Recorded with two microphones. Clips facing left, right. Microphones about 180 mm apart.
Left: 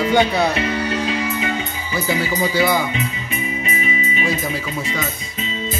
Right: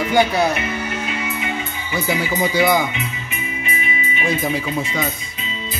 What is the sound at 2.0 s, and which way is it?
Speech, 15° right (ahead or behind).